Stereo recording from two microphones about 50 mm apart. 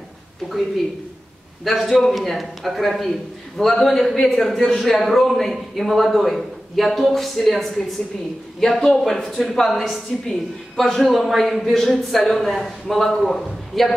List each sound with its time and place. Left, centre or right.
1.6 s speech: centre